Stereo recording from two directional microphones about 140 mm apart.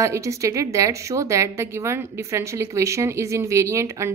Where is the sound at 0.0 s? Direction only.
20° right (ahead or behind).